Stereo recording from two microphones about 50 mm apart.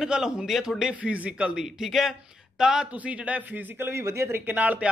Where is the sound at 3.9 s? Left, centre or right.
Right.